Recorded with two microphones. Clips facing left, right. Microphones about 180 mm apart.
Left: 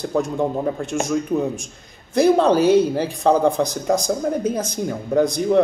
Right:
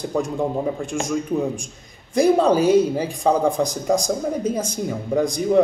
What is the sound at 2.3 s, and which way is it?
A man's voice, 10° right (ahead or behind).